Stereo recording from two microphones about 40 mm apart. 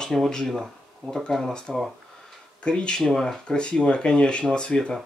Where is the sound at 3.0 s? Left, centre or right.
Centre.